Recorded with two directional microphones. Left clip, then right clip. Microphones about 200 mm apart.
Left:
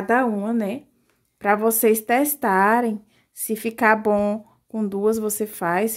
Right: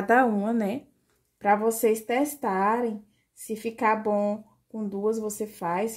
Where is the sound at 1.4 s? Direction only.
25° left (ahead or behind).